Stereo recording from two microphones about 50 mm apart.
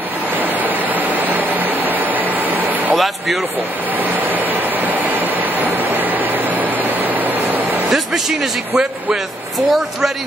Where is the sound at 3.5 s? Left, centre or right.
Right.